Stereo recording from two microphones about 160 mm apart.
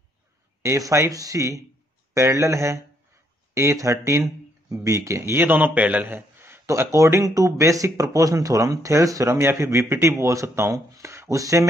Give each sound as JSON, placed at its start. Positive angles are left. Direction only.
{"t": 0.6, "sound": "a man's voice", "side_deg": -20}